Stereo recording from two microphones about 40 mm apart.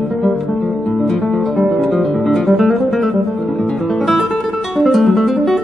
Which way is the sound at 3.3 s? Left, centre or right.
Centre.